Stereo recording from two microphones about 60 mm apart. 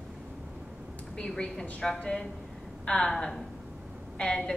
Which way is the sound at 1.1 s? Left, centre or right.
Centre.